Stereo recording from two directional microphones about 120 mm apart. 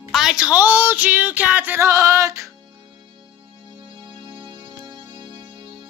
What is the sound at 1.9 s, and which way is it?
Music, 25° right (ahead or behind).